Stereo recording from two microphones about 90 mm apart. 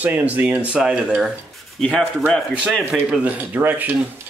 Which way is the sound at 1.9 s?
5° left (ahead or behind).